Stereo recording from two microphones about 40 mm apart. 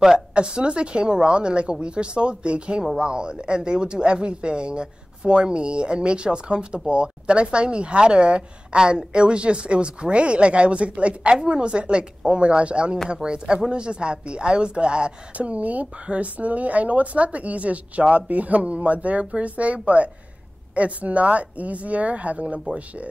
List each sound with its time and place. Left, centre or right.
0.3 s speech: right
15.3 s speech: right